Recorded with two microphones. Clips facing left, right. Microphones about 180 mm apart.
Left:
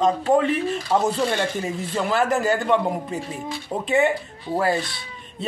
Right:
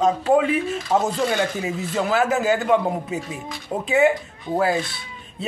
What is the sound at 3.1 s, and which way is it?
Speech, 40° left (ahead or behind).